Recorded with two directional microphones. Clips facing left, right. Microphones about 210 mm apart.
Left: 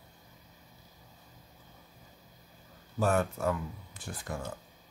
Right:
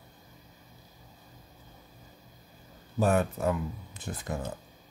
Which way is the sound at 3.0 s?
15° right (ahead or behind).